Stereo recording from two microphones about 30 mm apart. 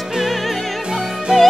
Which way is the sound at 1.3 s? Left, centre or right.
Right.